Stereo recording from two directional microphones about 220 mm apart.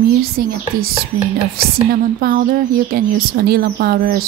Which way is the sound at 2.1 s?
40° right (ahead or behind).